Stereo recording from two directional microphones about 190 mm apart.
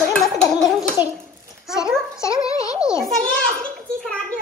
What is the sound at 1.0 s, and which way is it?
Speech, 10° right (ahead or behind).